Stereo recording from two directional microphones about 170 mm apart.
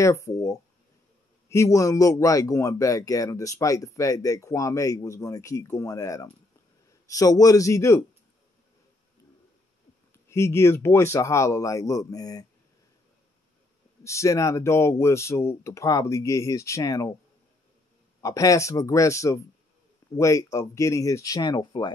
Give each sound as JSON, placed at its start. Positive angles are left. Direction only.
{"t": 0.0, "sound": "speech", "side_deg": 20}
{"t": 10.1, "sound": "speech", "side_deg": 15}
{"t": 14.0, "sound": "speech", "side_deg": 15}
{"t": 18.2, "sound": "speech", "side_deg": 20}